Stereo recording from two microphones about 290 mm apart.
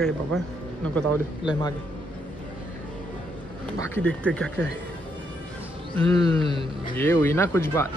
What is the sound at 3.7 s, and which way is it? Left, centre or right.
Speech, centre.